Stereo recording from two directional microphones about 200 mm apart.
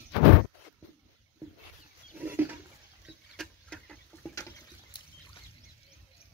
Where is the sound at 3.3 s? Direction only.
Centre (ahead or behind).